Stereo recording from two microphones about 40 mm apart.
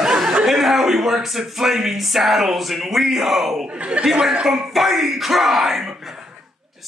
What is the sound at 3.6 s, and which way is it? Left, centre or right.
Speech, right.